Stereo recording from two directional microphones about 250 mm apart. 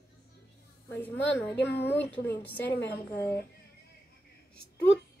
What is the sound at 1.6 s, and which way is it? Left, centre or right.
Speech, left.